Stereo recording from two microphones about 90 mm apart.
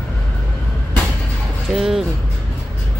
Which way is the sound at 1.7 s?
5° right (ahead or behind).